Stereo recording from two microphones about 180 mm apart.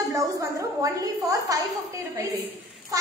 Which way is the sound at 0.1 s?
20° right (ahead or behind).